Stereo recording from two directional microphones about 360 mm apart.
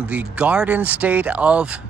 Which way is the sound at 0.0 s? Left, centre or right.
Centre.